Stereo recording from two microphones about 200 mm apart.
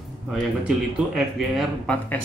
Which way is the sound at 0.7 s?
Centre (ahead or behind).